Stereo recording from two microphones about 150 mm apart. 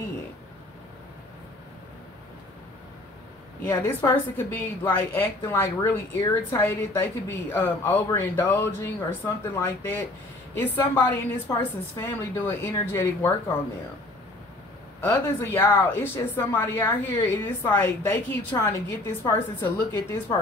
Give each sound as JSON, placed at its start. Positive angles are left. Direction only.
{"t": 3.6, "sound": "a woman's voice", "side_deg": 15}
{"t": 15.0, "sound": "a woman's voice", "side_deg": 15}